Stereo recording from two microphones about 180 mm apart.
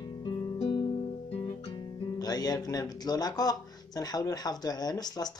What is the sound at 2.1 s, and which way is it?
Speech, 20° left (ahead or behind).